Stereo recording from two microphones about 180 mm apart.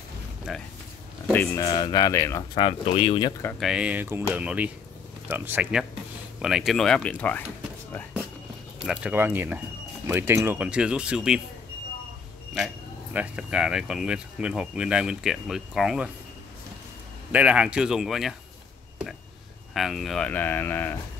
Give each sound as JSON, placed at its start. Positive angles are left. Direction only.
{"t": 0.5, "sound": "speech", "side_deg": -5}
{"t": 1.2, "sound": "speech", "side_deg": 10}
{"t": 3.5, "sound": "speech", "side_deg": -5}
{"t": 8.7, "sound": "speech", "side_deg": 0}
{"t": 12.5, "sound": "speech", "side_deg": -5}
{"t": 17.3, "sound": "speech", "side_deg": -5}
{"t": 19.7, "sound": "speech", "side_deg": 0}